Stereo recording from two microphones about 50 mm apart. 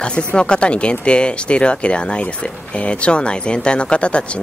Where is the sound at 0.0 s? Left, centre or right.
Left.